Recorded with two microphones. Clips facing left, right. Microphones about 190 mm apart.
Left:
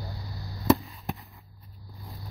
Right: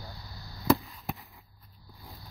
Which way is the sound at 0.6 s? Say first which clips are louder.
Left 2 dB; centre (ahead or behind).